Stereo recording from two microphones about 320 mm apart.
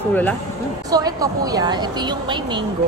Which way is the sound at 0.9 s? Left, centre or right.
Centre.